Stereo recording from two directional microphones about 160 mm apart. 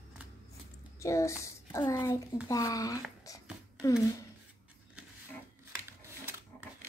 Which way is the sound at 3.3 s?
20° left (ahead or behind).